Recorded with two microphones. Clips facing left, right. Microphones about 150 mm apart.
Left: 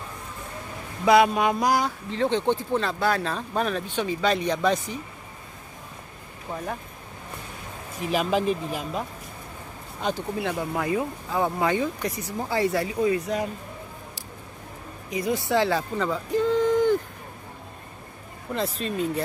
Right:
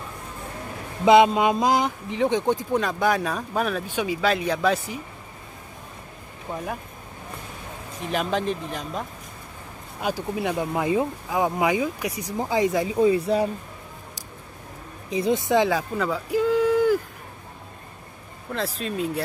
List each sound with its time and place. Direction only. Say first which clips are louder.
1.0 s speech: right 3 dB; 20° right (ahead or behind); by 4.9 s 5° right (ahead or behind)
6.5 s speech: right 1 dB; 10° right (ahead or behind)
8.0 s speech: left 2 dB; 5° left (ahead or behind)
9.9 s speech: right 1 dB; 10° right (ahead or behind)
12.9 s speech: right 4 dB; 30° right (ahead or behind)
15.0 s speech: right 4 dB; 25° right (ahead or behind)
16.0 s a sound: right 1 dB; 10° right (ahead or behind)
18.5 s speech: even; centre (ahead or behind)